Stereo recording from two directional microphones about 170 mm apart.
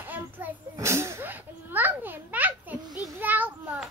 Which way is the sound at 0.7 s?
15° right (ahead or behind).